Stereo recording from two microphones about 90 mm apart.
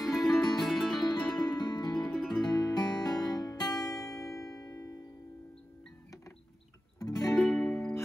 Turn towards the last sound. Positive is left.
turn(degrees=10)  # may be behind; listen again after turning